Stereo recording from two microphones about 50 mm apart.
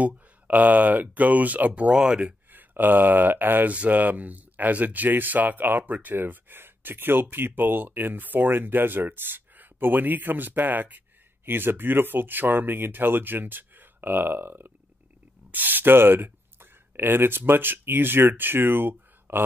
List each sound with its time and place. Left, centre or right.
0.0 s speech: right
2.5 s speech: right
3.7 s speech: right